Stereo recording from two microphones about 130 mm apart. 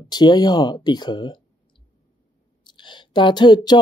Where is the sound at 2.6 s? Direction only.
35° left (ahead or behind).